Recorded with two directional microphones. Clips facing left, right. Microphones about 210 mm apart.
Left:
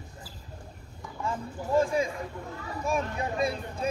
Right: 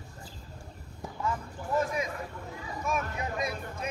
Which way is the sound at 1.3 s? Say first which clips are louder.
Left 3 dB; 30° left (ahead or behind).